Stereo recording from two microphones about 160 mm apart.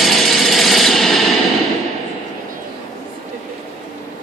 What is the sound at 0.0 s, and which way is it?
Tools, centre (ahead or behind).